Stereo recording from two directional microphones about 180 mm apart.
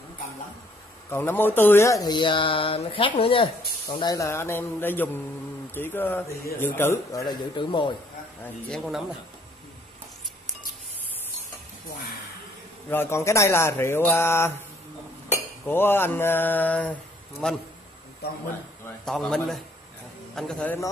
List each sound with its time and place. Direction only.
1.1 s speech: 10° left (ahead or behind); by 7.9 s 25° left (ahead or behind)
8.6 s a man's voice: centre (ahead or behind)
12.9 s speech: 15° left (ahead or behind)
15.6 s a man's voice: 10° left (ahead or behind)
18.9 s a man's voice: 5° left (ahead or behind)